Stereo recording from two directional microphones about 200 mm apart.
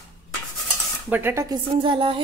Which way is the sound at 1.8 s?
25° right (ahead or behind).